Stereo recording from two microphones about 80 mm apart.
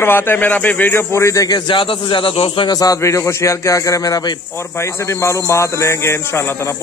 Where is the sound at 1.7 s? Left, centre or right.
Left.